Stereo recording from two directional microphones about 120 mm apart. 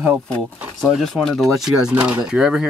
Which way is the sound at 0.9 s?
Centre (ahead or behind).